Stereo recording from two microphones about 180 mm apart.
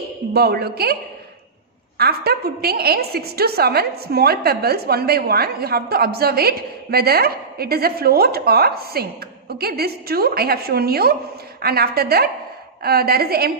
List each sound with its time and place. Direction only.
0.3 s a woman's voice: 60° right (ahead or behind)
2.0 s a woman's voice: 60° right (ahead or behind)